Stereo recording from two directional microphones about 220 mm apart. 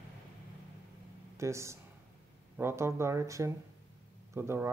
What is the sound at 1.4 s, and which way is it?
Speech, 15° right (ahead or behind).